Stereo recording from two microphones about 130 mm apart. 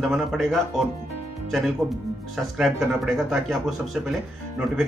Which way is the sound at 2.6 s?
Centre (ahead or behind).